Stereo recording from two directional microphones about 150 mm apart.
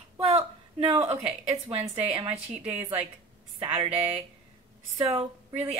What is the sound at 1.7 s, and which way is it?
Speech, 40° right (ahead or behind).